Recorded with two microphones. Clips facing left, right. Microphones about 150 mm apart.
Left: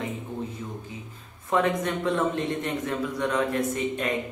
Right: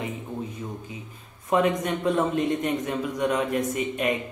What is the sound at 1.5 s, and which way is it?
A man's voice, 15° right (ahead or behind).